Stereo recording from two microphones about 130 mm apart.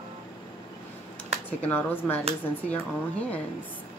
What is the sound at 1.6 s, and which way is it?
Speech, 15° left (ahead or behind).